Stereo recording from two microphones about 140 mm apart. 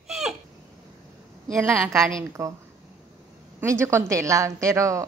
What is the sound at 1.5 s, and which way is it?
Speech, 20° right (ahead or behind).